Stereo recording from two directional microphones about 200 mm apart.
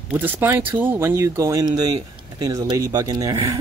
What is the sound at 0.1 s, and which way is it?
Speech, 10° right (ahead or behind).